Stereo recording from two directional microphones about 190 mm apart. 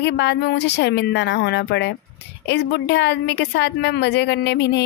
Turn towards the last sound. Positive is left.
turn(degrees=65)  # may be behind; listen again after turning